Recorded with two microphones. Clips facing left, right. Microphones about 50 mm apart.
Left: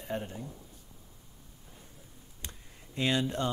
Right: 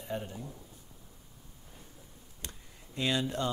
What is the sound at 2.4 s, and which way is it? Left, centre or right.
Computer keyboard, left.